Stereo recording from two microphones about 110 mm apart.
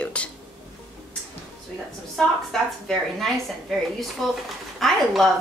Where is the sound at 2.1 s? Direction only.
5° left (ahead or behind).